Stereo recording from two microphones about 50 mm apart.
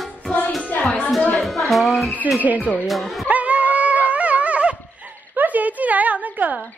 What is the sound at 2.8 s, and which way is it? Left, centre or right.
Speech, centre.